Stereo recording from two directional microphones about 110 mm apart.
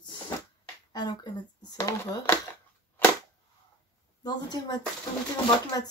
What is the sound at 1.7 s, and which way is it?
Speech, 20° left (ahead or behind).